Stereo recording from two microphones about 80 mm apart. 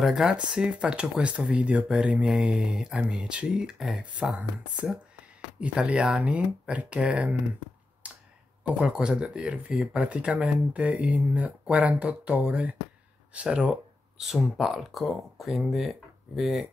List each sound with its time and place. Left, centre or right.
0.0 s speech: centre
8.0 s a sound: centre
8.6 s speech: centre